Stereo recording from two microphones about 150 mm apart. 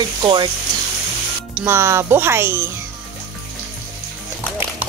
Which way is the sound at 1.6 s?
15° right (ahead or behind).